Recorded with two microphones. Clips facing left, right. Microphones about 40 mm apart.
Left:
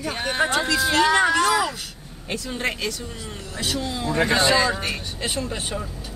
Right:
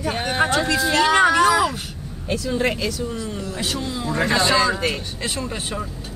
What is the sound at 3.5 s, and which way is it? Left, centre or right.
Speech, centre.